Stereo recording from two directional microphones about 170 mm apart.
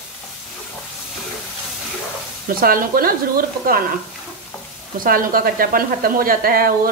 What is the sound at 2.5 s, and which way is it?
Sizzle, 55° right (ahead or behind).